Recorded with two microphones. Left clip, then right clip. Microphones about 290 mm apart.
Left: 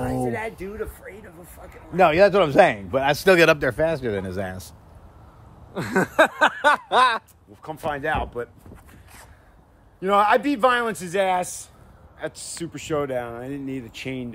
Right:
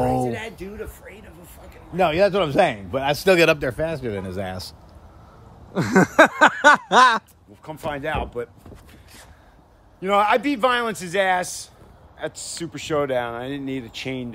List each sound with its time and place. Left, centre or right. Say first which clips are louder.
0.0 s speech: right 3 dB; centre
5.9 s a sound: right 4 dB; right
7.6 s speech: left 1 dB; centre
9.9 s a man's voice: even; centre